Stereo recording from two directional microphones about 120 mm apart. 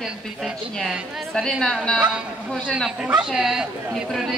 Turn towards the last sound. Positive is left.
turn(degrees=-5)  # may be behind; listen again after turning